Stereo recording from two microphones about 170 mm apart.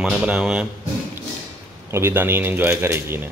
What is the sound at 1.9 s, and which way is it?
A man's voice, 15° right (ahead or behind).